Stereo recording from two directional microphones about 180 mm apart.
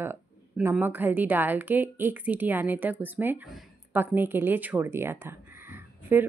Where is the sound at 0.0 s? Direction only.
15° right (ahead or behind).